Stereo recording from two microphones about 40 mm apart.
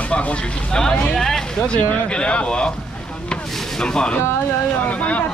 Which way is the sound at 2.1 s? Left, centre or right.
Left.